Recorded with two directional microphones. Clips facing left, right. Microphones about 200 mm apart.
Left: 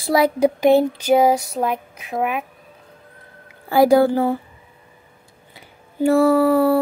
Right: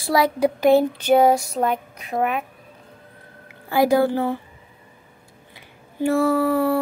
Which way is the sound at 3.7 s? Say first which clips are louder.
Left 4 dB; 30° left (ahead or behind).